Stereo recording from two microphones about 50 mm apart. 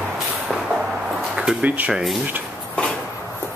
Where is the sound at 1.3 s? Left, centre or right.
Centre.